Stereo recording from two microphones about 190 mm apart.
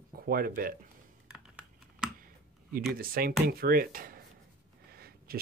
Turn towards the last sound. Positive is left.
turn(degrees=-55)  # may be behind; listen again after turning